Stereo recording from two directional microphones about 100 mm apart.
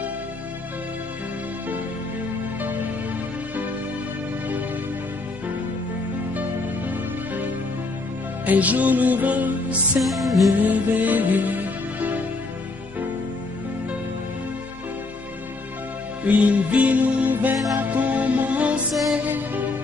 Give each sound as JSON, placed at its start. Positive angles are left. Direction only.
{"t": 6.9, "sound": "music", "side_deg": -15}
{"t": 9.9, "sound": "music", "side_deg": 0}
{"t": 10.6, "sound": "music", "side_deg": -15}
{"t": 16.3, "sound": "music", "side_deg": -15}